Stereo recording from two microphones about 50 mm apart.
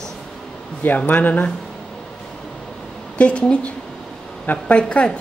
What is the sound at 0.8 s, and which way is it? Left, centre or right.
Speech, left.